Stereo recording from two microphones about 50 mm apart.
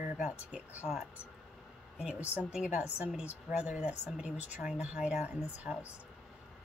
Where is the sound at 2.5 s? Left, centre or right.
Centre.